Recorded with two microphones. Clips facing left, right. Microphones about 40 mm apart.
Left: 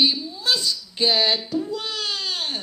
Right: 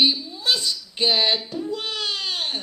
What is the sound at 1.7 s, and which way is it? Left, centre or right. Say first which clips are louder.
Baby cry: right 1 dB; right.